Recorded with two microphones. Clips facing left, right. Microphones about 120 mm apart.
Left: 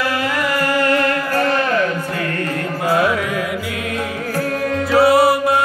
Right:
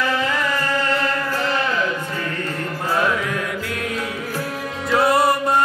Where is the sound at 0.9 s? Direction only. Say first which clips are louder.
Left 5 dB; 55° left (ahead or behind).